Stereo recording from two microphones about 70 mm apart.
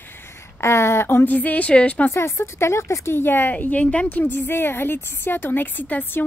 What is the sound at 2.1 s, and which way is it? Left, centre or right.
A woman's voice, left.